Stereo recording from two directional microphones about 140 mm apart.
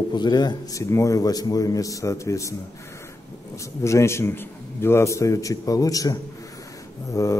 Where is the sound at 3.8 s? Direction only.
20° left (ahead or behind).